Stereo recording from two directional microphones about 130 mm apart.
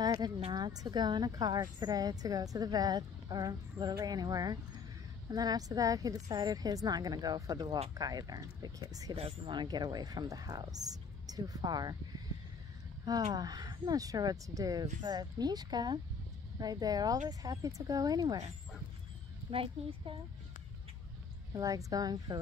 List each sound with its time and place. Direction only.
0.0 s a sound: 35° right (ahead or behind)
0.5 s a woman's voice: 30° right (ahead or behind)
9.1 s a woman's voice: 40° right (ahead or behind)
13.3 s a woman's voice: 30° right (ahead or behind)
19.5 s a child's voice: 45° right (ahead or behind)
21.5 s a woman's voice: 25° right (ahead or behind)